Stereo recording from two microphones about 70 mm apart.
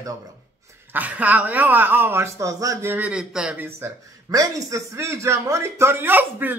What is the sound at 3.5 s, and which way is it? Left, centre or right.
Speech, right.